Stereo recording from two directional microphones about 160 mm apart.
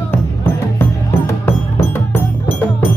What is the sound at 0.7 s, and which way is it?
Music, 15° left (ahead or behind).